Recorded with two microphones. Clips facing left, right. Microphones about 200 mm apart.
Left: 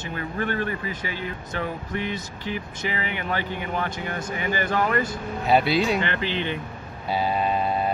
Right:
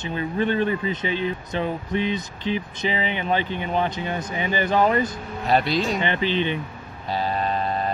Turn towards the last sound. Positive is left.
turn(degrees=10)  # may be behind; listen again after turning